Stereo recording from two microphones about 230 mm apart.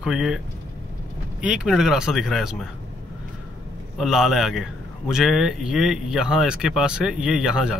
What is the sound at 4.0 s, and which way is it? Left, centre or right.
Speech, centre.